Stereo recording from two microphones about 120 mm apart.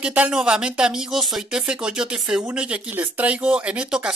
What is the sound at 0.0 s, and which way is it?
Speech, 10° right (ahead or behind).